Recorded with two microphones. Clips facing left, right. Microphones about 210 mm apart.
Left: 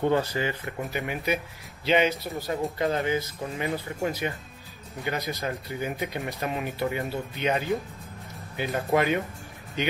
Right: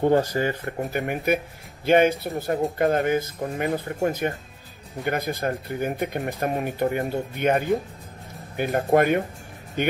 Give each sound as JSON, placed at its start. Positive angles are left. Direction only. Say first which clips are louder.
{"t": 0.4, "sound": "speech", "louder": "right 4 dB", "side_deg": -45}